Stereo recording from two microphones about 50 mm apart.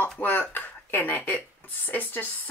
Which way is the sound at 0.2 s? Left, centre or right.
Left.